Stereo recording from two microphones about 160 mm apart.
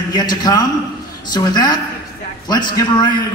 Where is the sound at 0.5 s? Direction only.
25° left (ahead or behind).